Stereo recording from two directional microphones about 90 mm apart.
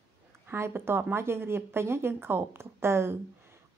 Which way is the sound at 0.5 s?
25° right (ahead or behind).